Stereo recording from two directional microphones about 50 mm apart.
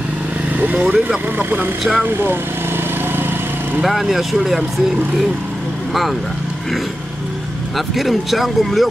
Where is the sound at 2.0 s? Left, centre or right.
Right.